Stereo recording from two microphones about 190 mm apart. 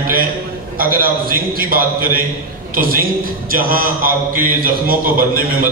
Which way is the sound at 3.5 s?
50° right (ahead or behind).